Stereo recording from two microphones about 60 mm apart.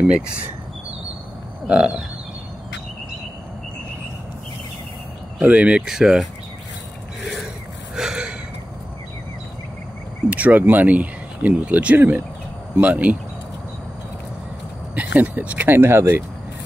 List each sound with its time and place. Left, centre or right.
1.7 s speech: centre
5.4 s speech: right
5.9 s speech: centre
7.9 s gasp: centre
10.3 s speech: right
15.0 s speech: right
15.7 s speech: right